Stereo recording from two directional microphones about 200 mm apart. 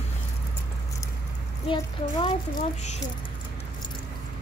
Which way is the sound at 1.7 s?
25° left (ahead or behind).